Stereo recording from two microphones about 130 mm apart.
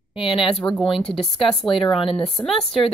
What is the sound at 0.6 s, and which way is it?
Speech, 20° left (ahead or behind).